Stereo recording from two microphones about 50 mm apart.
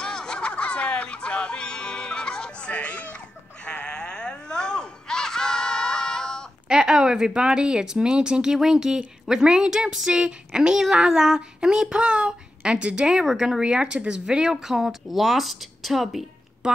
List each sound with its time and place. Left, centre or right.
0.0 s music: centre
3.6 s a sound: left
6.7 s speech: centre